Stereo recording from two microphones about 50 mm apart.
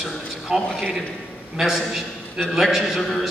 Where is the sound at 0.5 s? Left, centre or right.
Centre.